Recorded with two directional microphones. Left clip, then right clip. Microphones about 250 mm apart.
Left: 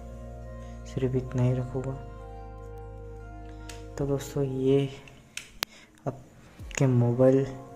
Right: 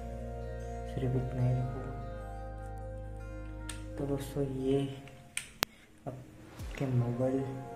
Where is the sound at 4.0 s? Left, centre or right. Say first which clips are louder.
Left 6 dB; left.